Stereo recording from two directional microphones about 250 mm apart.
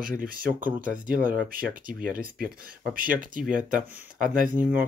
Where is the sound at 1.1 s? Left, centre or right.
Right.